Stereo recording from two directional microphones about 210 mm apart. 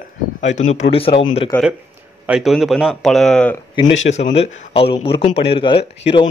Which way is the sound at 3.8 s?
30° left (ahead or behind).